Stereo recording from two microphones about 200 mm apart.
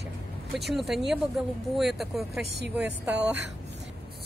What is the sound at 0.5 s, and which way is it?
Speech, centre (ahead or behind).